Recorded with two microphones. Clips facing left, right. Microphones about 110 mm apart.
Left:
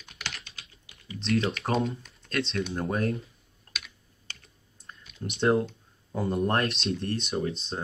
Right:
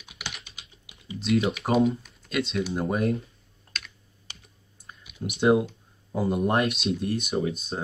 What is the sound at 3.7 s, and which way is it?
Computer keyboard, 5° left (ahead or behind).